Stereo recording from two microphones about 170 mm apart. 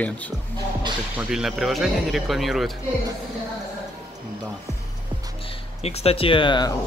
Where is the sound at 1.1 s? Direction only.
5° right (ahead or behind).